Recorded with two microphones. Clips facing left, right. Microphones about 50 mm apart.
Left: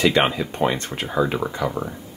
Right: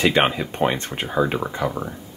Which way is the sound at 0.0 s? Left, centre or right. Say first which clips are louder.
Even; centre.